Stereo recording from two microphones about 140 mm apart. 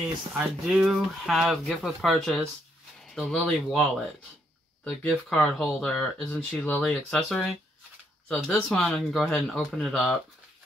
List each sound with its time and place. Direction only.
0.3 s speech: centre (ahead or behind)